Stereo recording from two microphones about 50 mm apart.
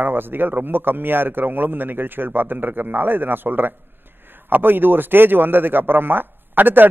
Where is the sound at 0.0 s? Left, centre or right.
Right.